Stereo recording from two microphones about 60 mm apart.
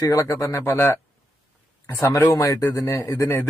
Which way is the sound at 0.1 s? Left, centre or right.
Left.